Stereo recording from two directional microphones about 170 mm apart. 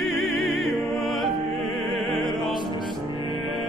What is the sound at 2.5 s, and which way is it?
Music, 25° left (ahead or behind).